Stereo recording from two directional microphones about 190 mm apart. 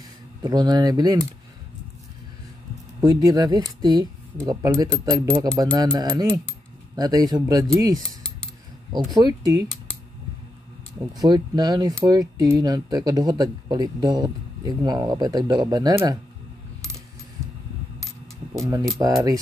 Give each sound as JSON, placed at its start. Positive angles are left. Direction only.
{"t": 0.4, "sound": "speech", "side_deg": -20}
{"t": 3.0, "sound": "speech", "side_deg": -20}
{"t": 9.2, "sound": "speech", "side_deg": -20}
{"t": 11.1, "sound": "speech", "side_deg": -20}
{"t": 18.9, "sound": "speech", "side_deg": -20}